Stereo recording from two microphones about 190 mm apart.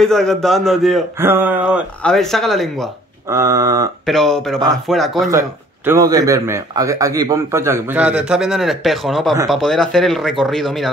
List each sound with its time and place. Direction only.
0.0 s a man's voice: 5° left (ahead or behind)
1.2 s a man's voice: 10° right (ahead or behind)
3.3 s speech: 15° right (ahead or behind)
4.0 s a man's voice: centre (ahead or behind)
5.3 s a man's voice: 15° right (ahead or behind); by 10.9 s centre (ahead or behind)